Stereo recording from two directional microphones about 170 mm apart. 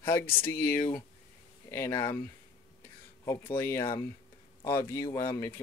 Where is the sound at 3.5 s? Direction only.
15° left (ahead or behind).